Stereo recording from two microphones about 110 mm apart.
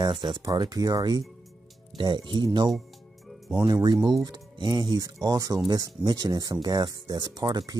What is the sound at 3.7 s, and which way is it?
Speech, 35° right (ahead or behind).